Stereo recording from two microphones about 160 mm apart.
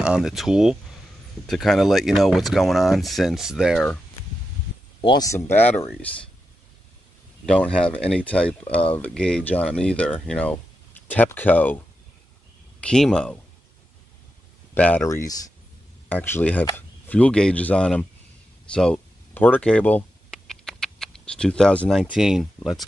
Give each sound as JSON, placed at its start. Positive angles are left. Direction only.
{"t": 0.0, "sound": "speech", "side_deg": -5}
{"t": 5.0, "sound": "speech", "side_deg": 25}
{"t": 7.4, "sound": "speech", "side_deg": 5}
{"t": 12.8, "sound": "speech", "side_deg": 5}
{"t": 14.7, "sound": "speech", "side_deg": 10}
{"t": 16.1, "sound": "speech", "side_deg": 10}
{"t": 18.7, "sound": "a sound", "side_deg": 5}
{"t": 22.1, "sound": "speech", "side_deg": -5}